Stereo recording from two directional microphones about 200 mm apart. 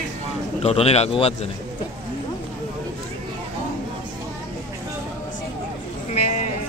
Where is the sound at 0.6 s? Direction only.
30° left (ahead or behind).